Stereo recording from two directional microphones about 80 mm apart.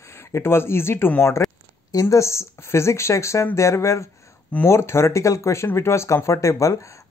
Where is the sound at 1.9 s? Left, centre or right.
Left.